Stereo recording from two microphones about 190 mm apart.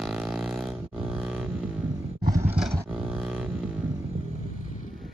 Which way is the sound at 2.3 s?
15° right (ahead or behind).